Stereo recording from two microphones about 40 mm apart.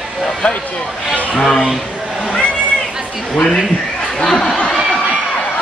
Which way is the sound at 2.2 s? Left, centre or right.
Centre.